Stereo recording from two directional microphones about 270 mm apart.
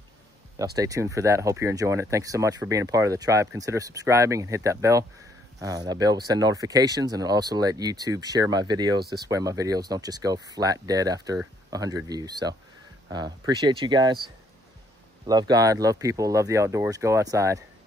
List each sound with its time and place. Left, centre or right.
0.7 s speech: centre
15.2 s speech: centre